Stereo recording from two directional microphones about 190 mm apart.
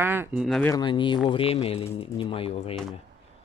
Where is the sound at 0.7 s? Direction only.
25° left (ahead or behind).